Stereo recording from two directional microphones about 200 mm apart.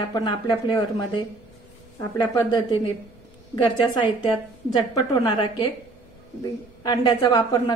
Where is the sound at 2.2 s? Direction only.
20° left (ahead or behind).